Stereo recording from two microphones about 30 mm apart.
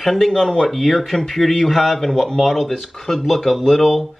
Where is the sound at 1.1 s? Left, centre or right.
Centre.